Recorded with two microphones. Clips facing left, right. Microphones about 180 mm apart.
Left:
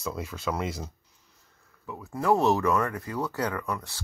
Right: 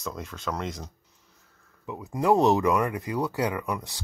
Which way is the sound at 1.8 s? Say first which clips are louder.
Right 2 dB; 20° right (ahead or behind).